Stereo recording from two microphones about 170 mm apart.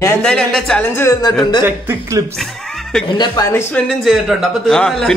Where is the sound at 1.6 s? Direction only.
15° right (ahead or behind).